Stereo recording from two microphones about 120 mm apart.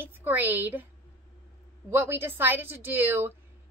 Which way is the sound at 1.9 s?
20° right (ahead or behind).